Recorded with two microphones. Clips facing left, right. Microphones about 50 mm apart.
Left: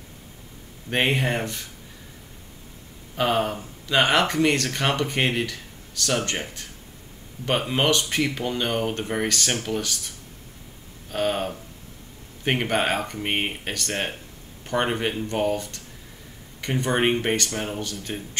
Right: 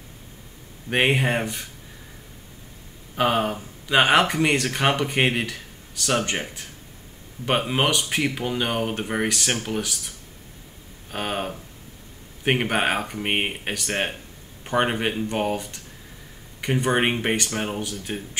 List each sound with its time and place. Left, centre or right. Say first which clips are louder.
0.8 s speech: right 2 dB; centre
3.2 s speech: right 1 dB; centre